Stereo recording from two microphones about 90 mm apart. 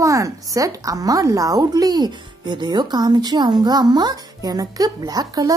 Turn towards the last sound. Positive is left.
turn(degrees=-45)  # may be behind; listen again after turning